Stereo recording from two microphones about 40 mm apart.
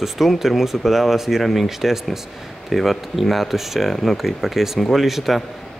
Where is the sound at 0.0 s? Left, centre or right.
Centre.